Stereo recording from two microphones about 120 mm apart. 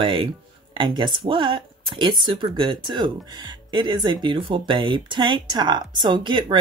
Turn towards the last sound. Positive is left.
turn(degrees=-40)  # may be behind; listen again after turning